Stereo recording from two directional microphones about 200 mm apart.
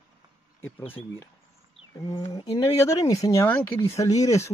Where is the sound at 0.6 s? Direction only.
10° left (ahead or behind).